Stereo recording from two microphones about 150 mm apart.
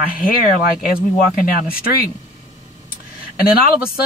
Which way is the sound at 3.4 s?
75° left (ahead or behind).